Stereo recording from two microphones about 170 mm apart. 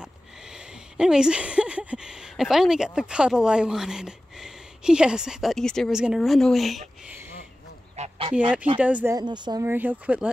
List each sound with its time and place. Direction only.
0.0 s speech: 5° right (ahead or behind)
7.9 s goose: 40° right (ahead or behind)
8.7 s speech: 10° right (ahead or behind)
9.1 s speech: 25° right (ahead or behind)
9.7 s speech: 10° right (ahead or behind)